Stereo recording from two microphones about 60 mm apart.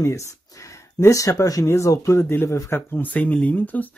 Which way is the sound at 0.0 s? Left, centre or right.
Left.